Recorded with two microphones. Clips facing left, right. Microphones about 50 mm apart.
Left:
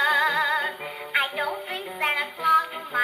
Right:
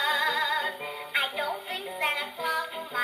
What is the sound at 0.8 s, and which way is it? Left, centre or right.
Music, centre.